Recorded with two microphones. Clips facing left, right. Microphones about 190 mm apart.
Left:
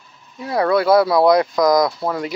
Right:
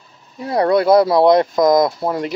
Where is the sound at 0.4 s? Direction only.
25° right (ahead or behind).